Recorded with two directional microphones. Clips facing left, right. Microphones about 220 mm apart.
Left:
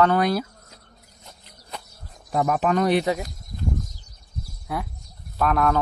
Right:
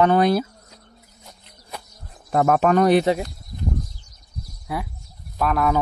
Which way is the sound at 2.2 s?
60° right (ahead or behind).